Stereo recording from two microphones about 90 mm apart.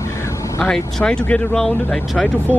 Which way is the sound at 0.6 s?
10° left (ahead or behind).